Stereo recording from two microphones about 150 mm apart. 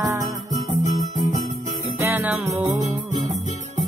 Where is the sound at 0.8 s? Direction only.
55° left (ahead or behind).